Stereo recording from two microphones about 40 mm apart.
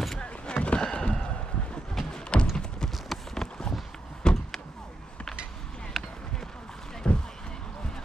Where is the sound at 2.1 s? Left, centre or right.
Left.